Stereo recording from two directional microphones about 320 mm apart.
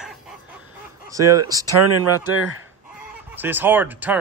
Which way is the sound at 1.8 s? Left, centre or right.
Right.